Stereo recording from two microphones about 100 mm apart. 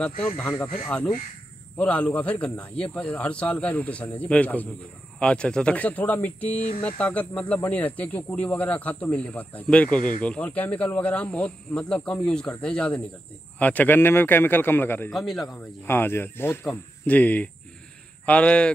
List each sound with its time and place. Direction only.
0.4 s a man's voice: 20° left (ahead or behind)
15.1 s speech: centre (ahead or behind)
15.8 s a man's voice: 20° left (ahead or behind)